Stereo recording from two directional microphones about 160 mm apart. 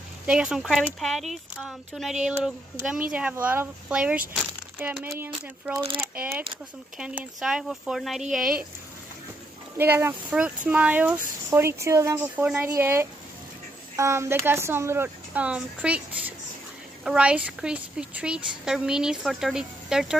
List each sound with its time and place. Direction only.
0.3 s a woman's voice: 5° right (ahead or behind)
5.3 s speech: 30° right (ahead or behind)
7.0 s a woman's voice: 5° right (ahead or behind)
9.8 s a woman's voice: 10° right (ahead or behind)